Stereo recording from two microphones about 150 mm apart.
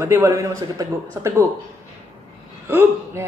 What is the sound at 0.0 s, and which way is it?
Speech, 20° right (ahead or behind).